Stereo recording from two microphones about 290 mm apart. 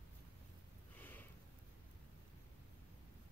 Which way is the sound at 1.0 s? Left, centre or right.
Centre.